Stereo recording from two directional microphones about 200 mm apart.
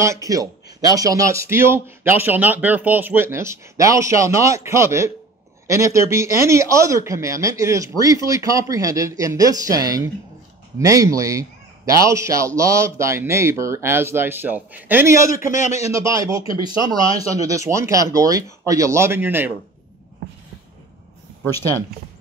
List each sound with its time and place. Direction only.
0.0 s speech: 15° right (ahead or behind)
15.5 s a man's voice: 35° left (ahead or behind)
15.9 s speech: 15° right (ahead or behind)
20.2 s a sound: 55° right (ahead or behind)